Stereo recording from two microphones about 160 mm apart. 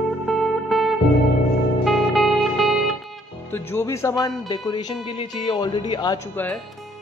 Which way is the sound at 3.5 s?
15° left (ahead or behind).